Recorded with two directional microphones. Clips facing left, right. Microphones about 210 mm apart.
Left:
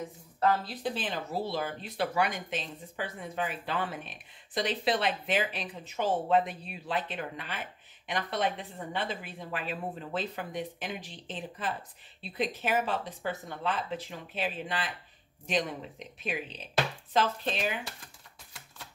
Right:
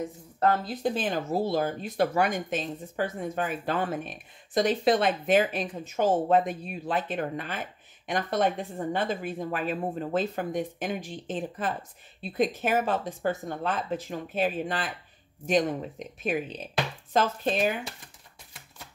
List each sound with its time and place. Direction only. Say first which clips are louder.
0.4 s speech: right 3 dB; 45° right (ahead or behind)